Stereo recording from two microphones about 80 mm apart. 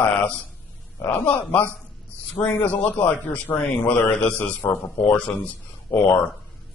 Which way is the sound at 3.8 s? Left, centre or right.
Left.